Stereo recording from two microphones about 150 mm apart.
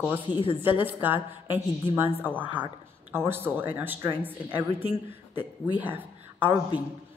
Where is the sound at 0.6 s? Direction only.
15° right (ahead or behind).